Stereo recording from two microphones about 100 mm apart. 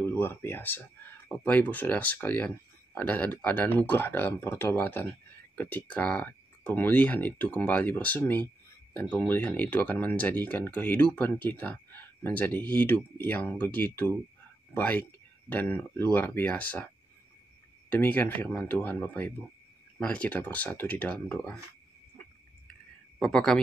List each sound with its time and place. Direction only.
0.0 s speech: 20° left (ahead or behind)
17.8 s speech: 15° left (ahead or behind)
23.1 s a man's voice: 5° left (ahead or behind)